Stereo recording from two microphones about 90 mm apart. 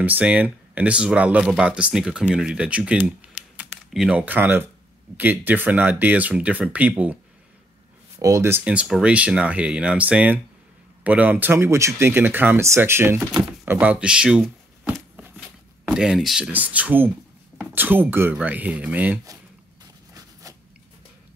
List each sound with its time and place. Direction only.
0.0 s speech: 15° right (ahead or behind)
8.2 s speech: 40° right (ahead or behind)
8.6 s speech: 10° right (ahead or behind)
14.4 s a sound: 5° left (ahead or behind)
15.9 s speech: 5° right (ahead or behind)
20.5 s a sound: 35° right (ahead or behind)